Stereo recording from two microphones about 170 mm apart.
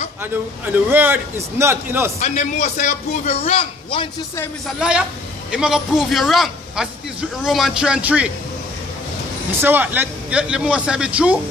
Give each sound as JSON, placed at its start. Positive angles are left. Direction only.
{"t": 0.2, "sound": "a man's voice", "side_deg": -10}
{"t": 2.1, "sound": "a man's voice", "side_deg": 45}
{"t": 4.6, "sound": "a man's voice", "side_deg": -5}
{"t": 9.6, "sound": "a man's voice", "side_deg": -10}